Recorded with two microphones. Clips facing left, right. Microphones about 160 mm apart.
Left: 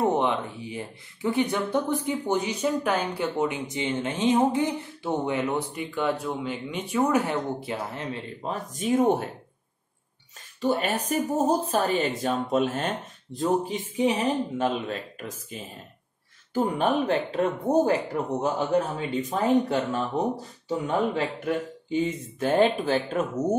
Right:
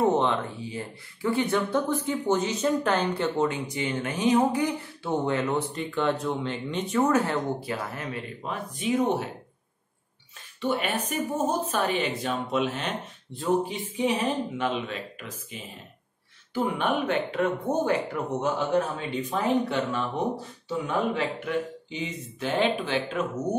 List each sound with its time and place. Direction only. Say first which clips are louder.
0.0 s speech: right 1 dB; 15° left (ahead or behind)
8.5 s speech: left 2 dB; 45° left (ahead or behind)
10.6 s a woman's voice: left 2 dB; 40° left (ahead or behind)